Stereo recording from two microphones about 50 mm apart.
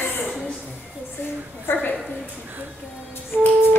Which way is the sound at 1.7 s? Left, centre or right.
Left.